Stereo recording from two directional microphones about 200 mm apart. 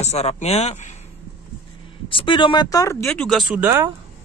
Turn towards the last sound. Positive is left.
turn(degrees=-10)  # may be behind; listen again after turning